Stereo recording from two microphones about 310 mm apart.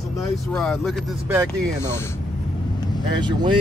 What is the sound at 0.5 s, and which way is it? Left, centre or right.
Speech, centre.